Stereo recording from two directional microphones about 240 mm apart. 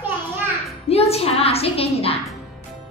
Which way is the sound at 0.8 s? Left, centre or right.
Left.